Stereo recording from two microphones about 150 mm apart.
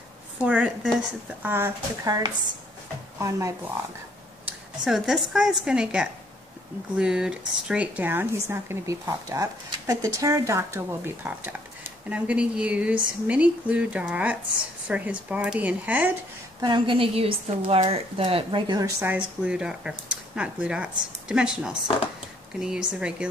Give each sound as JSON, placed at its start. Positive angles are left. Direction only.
{"t": 0.4, "sound": "speech", "side_deg": -5}
{"t": 4.5, "sound": "speech", "side_deg": -5}
{"t": 16.6, "sound": "speech", "side_deg": -30}
{"t": 18.8, "sound": "speech", "side_deg": -20}
{"t": 19.1, "sound": "speech", "side_deg": -5}